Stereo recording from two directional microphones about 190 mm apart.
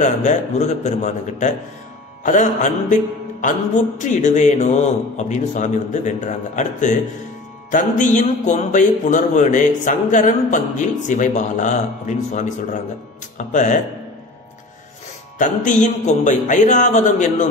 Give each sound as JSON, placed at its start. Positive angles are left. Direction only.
{"t": 0.0, "sound": "a man's voice", "side_deg": 40}
{"t": 15.3, "sound": "a man's voice", "side_deg": 40}